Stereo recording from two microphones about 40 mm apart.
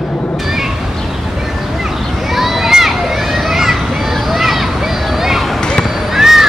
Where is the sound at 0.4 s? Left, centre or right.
Centre.